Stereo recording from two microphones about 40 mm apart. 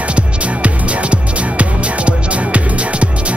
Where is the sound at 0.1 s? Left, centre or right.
Right.